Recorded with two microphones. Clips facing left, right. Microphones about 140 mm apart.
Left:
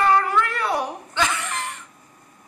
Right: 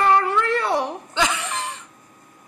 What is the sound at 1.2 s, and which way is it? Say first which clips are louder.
Chuckle: right 1 dB; 20° right (ahead or behind).